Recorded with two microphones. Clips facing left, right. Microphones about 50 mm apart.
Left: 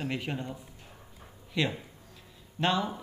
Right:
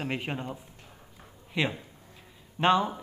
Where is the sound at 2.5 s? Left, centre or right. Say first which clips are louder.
Right 5 dB; right.